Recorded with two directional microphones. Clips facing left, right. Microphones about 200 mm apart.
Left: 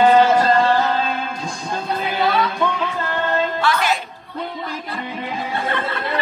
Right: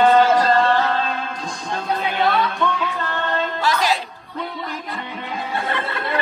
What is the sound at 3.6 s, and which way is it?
Music, 40° right (ahead or behind).